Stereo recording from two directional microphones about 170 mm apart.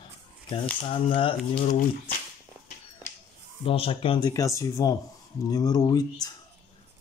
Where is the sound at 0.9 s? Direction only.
30° left (ahead or behind).